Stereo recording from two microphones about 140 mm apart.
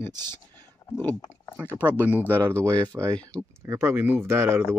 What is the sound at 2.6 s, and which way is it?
Speech, 25° right (ahead or behind).